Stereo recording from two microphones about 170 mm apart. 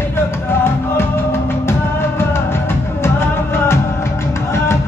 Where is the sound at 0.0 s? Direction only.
15° left (ahead or behind).